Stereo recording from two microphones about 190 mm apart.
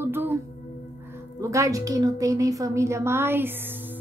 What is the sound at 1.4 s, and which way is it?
Speech, 15° right (ahead or behind).